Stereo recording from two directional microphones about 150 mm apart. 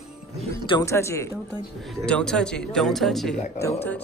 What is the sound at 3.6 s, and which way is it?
Speech, 15° left (ahead or behind).